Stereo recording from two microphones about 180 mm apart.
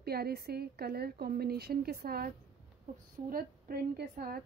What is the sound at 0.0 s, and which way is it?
A woman's voice, 60° right (ahead or behind).